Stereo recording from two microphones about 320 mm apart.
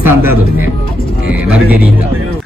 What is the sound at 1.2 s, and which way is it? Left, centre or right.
Music, left.